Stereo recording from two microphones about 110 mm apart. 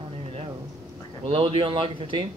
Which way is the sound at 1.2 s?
55° right (ahead or behind).